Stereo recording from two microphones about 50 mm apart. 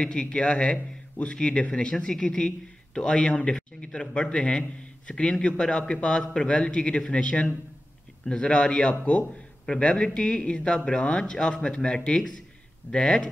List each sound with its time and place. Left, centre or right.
0.0 s speech: centre